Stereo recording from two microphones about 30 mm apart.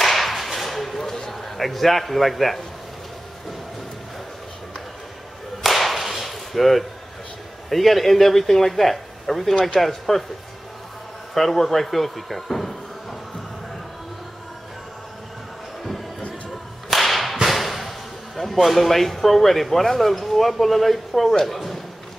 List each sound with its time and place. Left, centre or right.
0.0 s a sound: centre
1.0 s a sound: centre
1.3 s a man's voice: centre
5.6 s whip: centre
7.7 s speech: centre
11.3 s speech: centre
16.9 s whip: centre
17.5 s speech: centre